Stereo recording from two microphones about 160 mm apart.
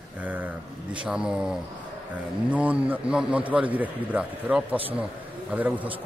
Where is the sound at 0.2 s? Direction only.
10° right (ahead or behind).